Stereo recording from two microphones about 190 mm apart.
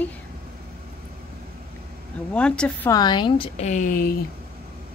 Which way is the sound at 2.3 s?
5° left (ahead or behind).